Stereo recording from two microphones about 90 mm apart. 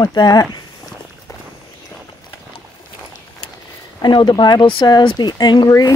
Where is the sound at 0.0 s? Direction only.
50° left (ahead or behind).